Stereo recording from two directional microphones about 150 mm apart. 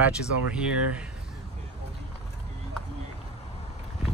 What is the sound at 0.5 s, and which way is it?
Speech, 5° right (ahead or behind).